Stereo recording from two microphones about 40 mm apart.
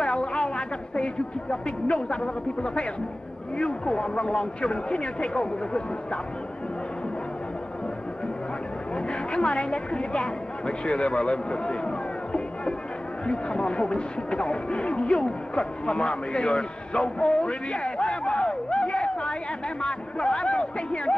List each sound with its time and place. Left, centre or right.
0.0 s a woman's voice: left
8.9 s a woman's voice: left